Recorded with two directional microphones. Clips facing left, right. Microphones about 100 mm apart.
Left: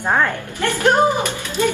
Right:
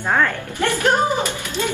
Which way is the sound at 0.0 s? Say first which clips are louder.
Left 1 dB; 15° left (ahead or behind).